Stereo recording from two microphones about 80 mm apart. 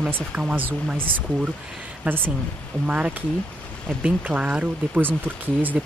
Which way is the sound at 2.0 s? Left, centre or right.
Right.